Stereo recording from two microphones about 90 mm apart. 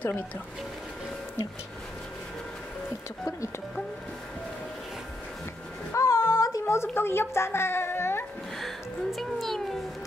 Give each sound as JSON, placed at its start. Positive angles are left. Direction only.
{"t": 5.9, "sound": "child singing", "side_deg": 30}
{"t": 6.6, "sound": "a child's voice", "side_deg": 25}
{"t": 8.5, "sound": "speech", "side_deg": 0}